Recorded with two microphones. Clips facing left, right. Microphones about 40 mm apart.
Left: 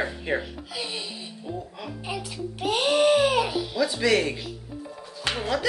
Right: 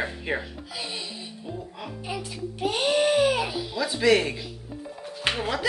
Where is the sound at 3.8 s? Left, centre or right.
Centre.